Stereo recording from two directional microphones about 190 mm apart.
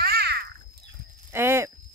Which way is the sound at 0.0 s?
55° right (ahead or behind).